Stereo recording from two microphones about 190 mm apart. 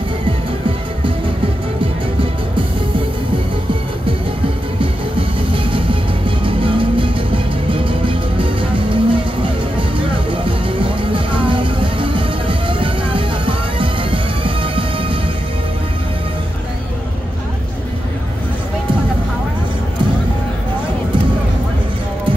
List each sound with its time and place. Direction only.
5.5 s music: 25° right (ahead or behind)